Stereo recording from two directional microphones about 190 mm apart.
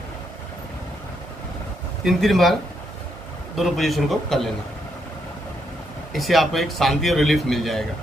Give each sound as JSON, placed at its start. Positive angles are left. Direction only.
{"t": 2.0, "sound": "a man's voice", "side_deg": 0}
{"t": 3.5, "sound": "a man's voice", "side_deg": 0}
{"t": 6.1, "sound": "a man's voice", "side_deg": 0}